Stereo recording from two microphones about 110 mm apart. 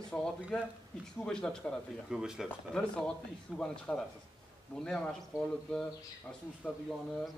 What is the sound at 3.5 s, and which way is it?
Speech, centre (ahead or behind).